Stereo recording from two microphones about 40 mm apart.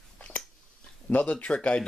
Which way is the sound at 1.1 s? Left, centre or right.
Left.